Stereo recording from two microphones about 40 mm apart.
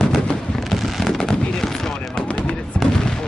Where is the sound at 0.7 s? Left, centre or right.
Centre.